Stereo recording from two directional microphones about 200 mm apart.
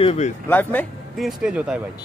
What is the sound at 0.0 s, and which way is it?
Speech, 30° left (ahead or behind).